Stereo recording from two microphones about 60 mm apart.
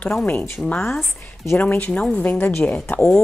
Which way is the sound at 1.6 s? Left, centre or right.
Left.